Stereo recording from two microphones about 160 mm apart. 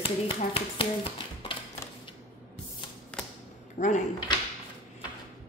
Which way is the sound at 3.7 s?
50° left (ahead or behind).